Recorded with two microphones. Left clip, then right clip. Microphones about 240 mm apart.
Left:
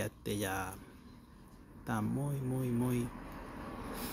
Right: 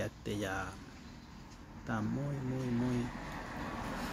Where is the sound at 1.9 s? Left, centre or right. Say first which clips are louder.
Left 1 dB; left.